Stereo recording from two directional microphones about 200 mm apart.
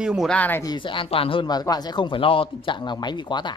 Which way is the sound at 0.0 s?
Centre (ahead or behind).